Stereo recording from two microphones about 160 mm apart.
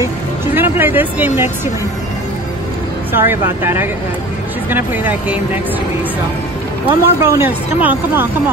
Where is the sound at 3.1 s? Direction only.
15° right (ahead or behind).